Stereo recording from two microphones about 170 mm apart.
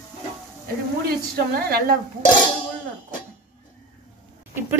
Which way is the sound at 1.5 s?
60° right (ahead or behind).